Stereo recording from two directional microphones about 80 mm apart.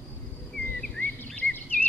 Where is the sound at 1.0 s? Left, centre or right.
Left.